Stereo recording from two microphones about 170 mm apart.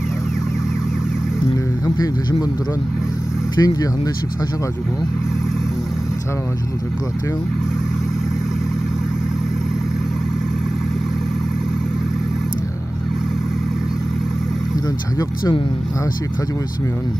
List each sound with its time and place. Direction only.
3.5 s speech: 20° left (ahead or behind)
15.1 s speech: 20° left (ahead or behind)